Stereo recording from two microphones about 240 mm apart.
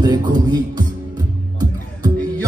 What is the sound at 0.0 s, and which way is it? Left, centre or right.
Music, centre.